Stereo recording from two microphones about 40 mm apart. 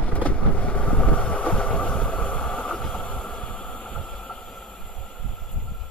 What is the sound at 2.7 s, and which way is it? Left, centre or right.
Train, centre.